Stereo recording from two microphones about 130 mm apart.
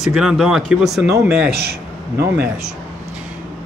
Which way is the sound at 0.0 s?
Centre (ahead or behind).